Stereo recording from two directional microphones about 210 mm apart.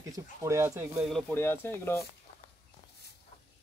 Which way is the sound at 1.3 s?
10° left (ahead or behind).